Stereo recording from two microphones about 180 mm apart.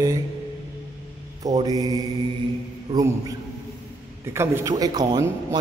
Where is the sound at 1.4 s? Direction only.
20° right (ahead or behind).